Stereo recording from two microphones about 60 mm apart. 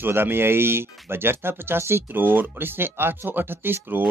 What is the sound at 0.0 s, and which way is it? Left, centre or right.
Speech, right.